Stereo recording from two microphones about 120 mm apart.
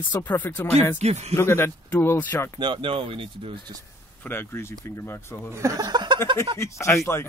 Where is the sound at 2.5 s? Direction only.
40° right (ahead or behind).